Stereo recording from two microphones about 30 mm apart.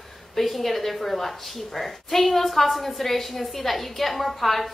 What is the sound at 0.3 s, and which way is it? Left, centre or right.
A woman's voice, centre.